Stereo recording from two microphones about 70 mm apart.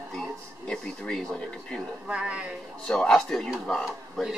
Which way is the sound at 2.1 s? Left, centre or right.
Centre.